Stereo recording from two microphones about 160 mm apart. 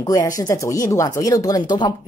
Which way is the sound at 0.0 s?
20° left (ahead or behind).